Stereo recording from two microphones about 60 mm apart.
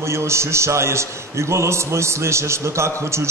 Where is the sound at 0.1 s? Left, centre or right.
Right.